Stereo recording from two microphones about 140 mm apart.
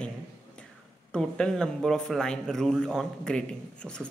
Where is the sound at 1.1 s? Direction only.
5° left (ahead or behind).